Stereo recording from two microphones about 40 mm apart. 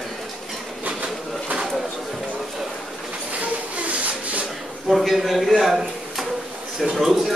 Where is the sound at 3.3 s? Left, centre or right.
Right.